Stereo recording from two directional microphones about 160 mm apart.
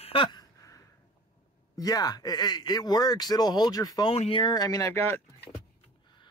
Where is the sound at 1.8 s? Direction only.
25° left (ahead or behind).